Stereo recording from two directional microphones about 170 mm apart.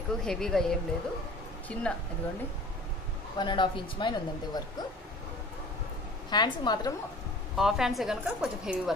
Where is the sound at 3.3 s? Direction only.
25° left (ahead or behind).